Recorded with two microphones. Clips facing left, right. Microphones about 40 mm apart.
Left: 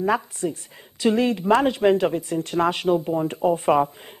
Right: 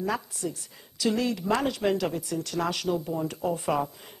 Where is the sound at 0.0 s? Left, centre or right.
Left.